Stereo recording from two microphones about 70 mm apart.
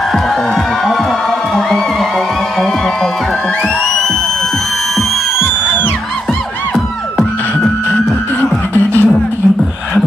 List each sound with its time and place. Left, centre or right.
1.5 s music: centre
6.7 s music: centre
7.9 s music: left